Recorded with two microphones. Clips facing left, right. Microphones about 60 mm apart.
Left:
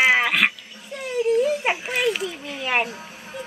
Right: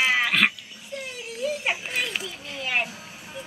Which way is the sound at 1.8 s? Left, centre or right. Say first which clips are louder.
Left 6 dB; centre.